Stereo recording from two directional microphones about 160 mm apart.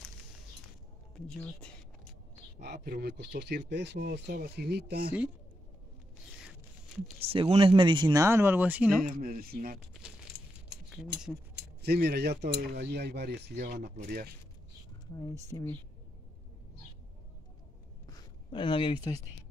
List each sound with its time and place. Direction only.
1.1 s speech: 5° left (ahead or behind)
2.6 s speech: 90° right
7.2 s speech: 35° right (ahead or behind)
8.2 s speech: 15° right (ahead or behind)
9.1 s speech: 65° right (ahead or behind)
11.5 s speech: 90° right
14.0 s speech: 75° right (ahead or behind)
15.5 s speech: 25° left (ahead or behind)
18.0 s a sound: 25° left (ahead or behind)